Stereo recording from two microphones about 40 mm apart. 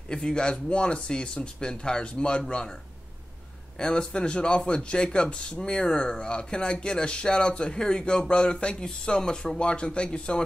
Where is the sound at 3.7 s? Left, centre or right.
Left.